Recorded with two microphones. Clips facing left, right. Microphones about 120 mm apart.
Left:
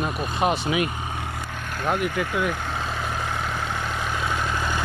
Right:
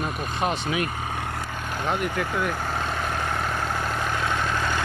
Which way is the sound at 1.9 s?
5° left (ahead or behind).